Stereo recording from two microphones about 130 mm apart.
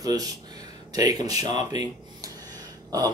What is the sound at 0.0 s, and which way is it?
Speech, 30° right (ahead or behind).